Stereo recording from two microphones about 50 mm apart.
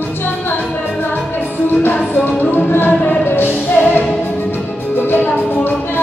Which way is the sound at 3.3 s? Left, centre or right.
Left.